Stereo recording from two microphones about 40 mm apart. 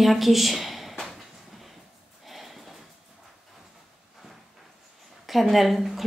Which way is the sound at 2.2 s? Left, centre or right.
Centre.